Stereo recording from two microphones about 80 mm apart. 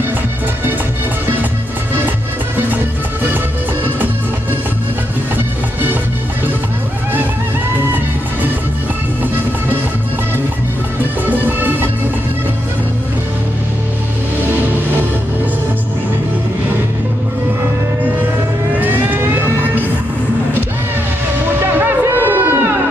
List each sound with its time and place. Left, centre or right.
11.2 s music: right
18.8 s music: right
22.0 s a sound: right